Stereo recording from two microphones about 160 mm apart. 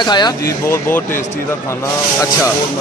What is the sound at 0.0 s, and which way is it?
Speech, 25° left (ahead or behind).